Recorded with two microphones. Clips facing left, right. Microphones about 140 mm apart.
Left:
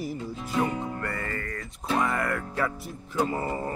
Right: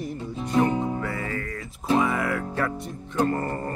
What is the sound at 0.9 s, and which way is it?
Music, centre (ahead or behind).